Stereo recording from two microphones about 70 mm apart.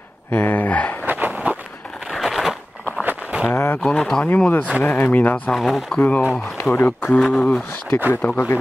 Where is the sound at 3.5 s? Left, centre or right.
Left.